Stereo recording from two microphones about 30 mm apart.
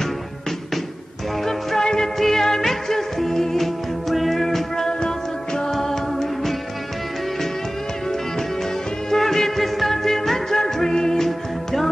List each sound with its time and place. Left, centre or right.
1.4 s music: centre
4.8 s music: left
5.7 s music: centre
9.1 s music: centre